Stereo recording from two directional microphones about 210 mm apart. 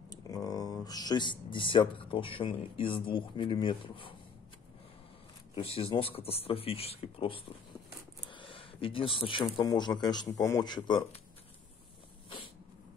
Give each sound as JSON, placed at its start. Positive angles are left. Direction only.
{"t": 0.1, "sound": "speech", "side_deg": 20}
{"t": 5.5, "sound": "speech", "side_deg": 25}
{"t": 8.3, "sound": "a sound", "side_deg": 25}
{"t": 9.6, "sound": "speech", "side_deg": 20}